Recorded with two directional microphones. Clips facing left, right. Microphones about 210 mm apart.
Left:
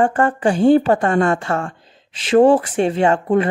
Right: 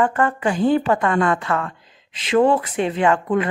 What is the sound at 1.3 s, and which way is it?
Speech, 30° left (ahead or behind).